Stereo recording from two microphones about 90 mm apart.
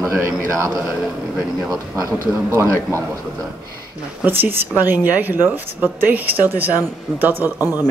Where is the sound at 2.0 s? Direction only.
30° right (ahead or behind).